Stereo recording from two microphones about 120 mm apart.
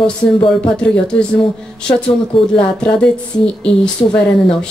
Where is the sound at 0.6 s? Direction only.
10° left (ahead or behind).